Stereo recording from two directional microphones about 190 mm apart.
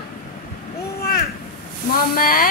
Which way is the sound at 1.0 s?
55° left (ahead or behind).